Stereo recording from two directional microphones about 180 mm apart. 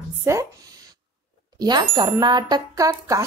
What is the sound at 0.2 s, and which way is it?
Speech, 15° right (ahead or behind).